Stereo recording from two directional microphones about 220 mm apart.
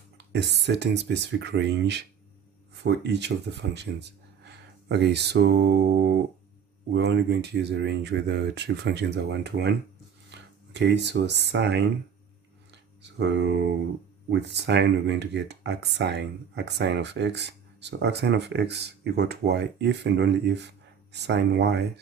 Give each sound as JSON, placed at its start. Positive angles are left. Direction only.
{"t": 0.3, "sound": "speech", "side_deg": -50}
{"t": 13.0, "sound": "speech", "side_deg": -50}